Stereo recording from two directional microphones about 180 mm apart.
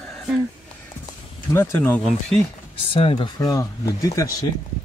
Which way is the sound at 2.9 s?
30° left (ahead or behind).